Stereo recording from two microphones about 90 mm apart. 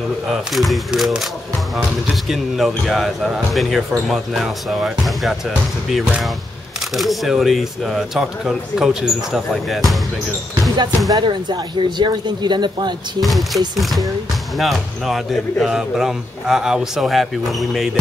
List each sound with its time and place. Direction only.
0.3 s speech: centre (ahead or behind)
11.1 s speech: 55° right (ahead or behind)
13.2 s speech: centre (ahead or behind)